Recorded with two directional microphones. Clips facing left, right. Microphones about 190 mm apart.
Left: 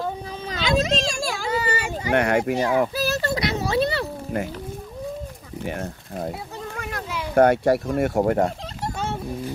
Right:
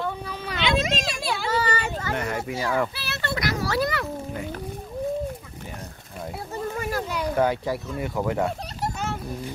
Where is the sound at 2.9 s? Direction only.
40° left (ahead or behind).